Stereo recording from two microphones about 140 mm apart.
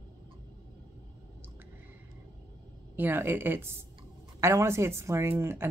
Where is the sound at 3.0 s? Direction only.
15° right (ahead or behind).